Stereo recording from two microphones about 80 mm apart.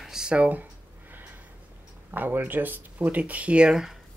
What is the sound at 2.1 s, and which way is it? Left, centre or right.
Speech, right.